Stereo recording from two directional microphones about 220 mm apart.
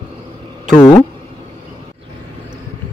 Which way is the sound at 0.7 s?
15° left (ahead or behind).